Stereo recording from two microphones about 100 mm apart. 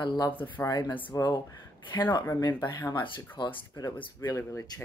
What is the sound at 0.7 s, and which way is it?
Speech, 40° left (ahead or behind).